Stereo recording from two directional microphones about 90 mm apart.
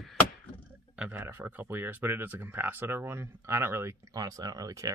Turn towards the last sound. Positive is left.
turn(degrees=-40)  # may be behind; listen again after turning